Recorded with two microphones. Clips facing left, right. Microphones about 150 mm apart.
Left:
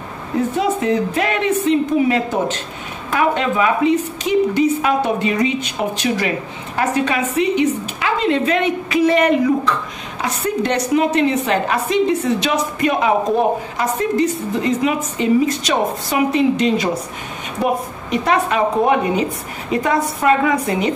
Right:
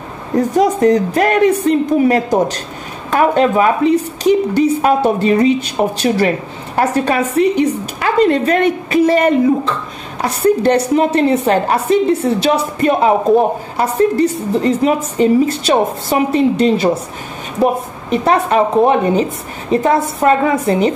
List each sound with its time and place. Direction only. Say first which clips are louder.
0.4 s speech: right 6 dB; 40° right (ahead or behind)